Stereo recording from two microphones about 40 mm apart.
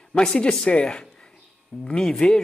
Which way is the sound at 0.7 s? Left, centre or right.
Left.